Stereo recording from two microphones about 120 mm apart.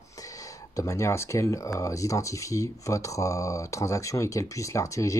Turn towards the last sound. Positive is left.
turn(degrees=25)  # may be behind; listen again after turning